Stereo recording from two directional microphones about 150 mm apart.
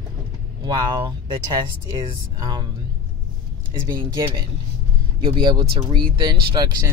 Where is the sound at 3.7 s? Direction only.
30° right (ahead or behind).